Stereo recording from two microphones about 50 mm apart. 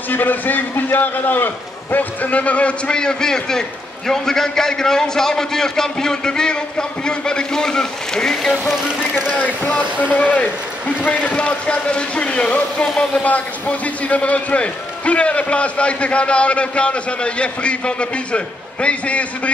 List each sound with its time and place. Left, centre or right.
0.1 s a man's voice: left; by 8.7 s centre
9.4 s a man's voice: left
12.8 s a man's voice: centre
13.2 s a man's voice: left